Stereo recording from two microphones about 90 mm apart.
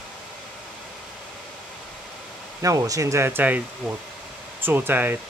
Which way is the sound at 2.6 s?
40° right (ahead or behind).